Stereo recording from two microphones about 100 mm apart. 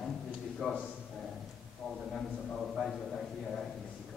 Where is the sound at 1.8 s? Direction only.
Centre (ahead or behind).